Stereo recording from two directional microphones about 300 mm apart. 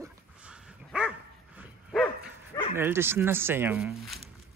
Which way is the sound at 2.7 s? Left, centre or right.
Centre.